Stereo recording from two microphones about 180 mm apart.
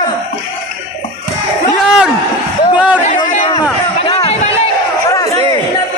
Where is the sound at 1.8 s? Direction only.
5° right (ahead or behind).